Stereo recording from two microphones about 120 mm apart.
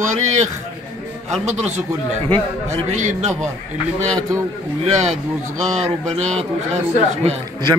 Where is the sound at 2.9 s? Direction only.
90° right.